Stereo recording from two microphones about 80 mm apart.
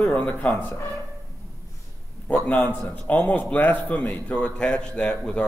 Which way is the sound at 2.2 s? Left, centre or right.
Centre.